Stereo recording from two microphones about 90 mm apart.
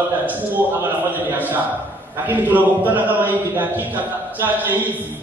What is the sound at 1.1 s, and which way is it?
A man's voice, 20° right (ahead or behind).